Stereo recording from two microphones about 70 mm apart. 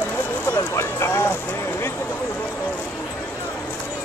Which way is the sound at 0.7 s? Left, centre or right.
Left.